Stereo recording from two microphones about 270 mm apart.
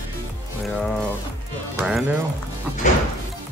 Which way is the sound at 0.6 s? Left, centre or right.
Centre.